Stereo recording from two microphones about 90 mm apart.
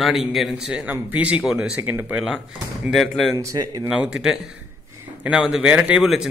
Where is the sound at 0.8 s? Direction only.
15° right (ahead or behind).